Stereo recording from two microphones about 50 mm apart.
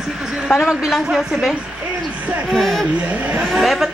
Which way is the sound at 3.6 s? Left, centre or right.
Centre.